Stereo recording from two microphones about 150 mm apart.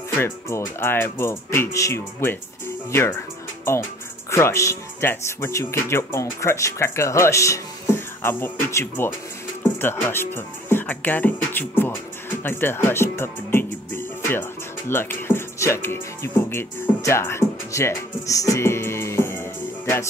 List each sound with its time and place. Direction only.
0.2 s speech: 15° left (ahead or behind)
4.3 s speech: 20° left (ahead or behind)